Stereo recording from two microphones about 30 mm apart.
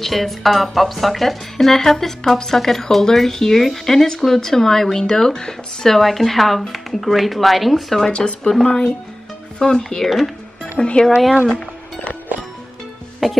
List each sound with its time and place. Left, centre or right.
0.0 s speech: centre
5.9 s speech: centre
8.6 s speech: left
10.0 s speech: centre
10.6 s speech: left
13.2 s music: centre